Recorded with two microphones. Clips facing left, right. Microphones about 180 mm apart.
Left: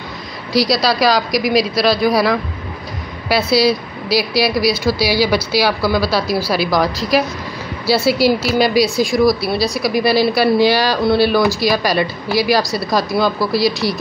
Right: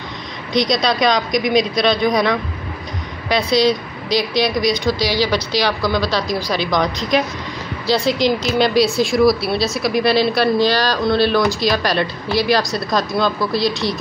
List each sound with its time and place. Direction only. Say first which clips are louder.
0.5 s a woman's voice: left 2 dB; 5° left (ahead or behind)